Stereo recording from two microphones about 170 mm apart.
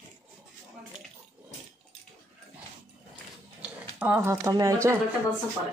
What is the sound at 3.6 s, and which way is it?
Speech, 10° right (ahead or behind).